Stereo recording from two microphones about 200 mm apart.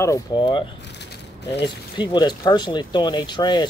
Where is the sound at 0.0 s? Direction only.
20° left (ahead or behind).